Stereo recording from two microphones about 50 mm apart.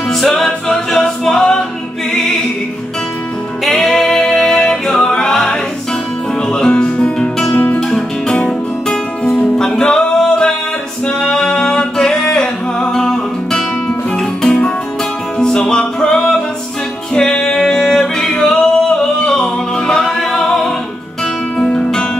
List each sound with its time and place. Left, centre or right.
0.1 s music: centre
3.6 s singing: centre
6.5 s music: centre
7.5 s guitar: left
7.9 s music: centre
11.1 s singing: centre
15.3 s music: centre
17.1 s singing: centre
21.5 s music: centre